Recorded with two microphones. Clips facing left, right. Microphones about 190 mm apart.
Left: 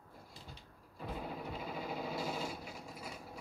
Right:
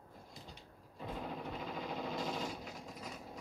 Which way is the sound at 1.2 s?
5° left (ahead or behind).